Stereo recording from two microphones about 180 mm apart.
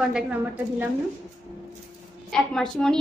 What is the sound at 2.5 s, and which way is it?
Speech, 5° left (ahead or behind).